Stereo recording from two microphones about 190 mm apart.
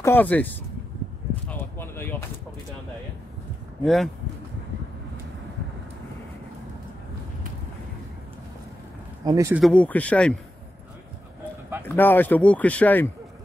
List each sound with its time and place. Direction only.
0.0 s speech: 10° left (ahead or behind)
1.5 s a sound: 10° left (ahead or behind)
3.8 s speech: centre (ahead or behind)
9.2 s speech: 15° right (ahead or behind)
9.6 s speech: 5° left (ahead or behind)
11.9 s speech: 10° left (ahead or behind)